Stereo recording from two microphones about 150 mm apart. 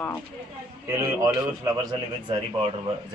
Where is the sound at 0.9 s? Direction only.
15° right (ahead or behind).